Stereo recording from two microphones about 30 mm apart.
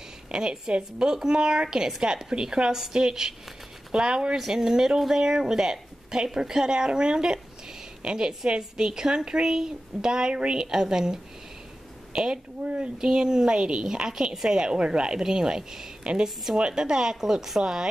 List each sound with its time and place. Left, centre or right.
0.3 s a woman's voice: right
6.7 s a woman's voice: right
12.6 s speech: right
13.0 s a woman's voice: right
13.6 s speech: right
13.8 s a woman's voice: right
16.0 s a woman's voice: right; by 17.6 s centre
17.6 s a woman's voice: right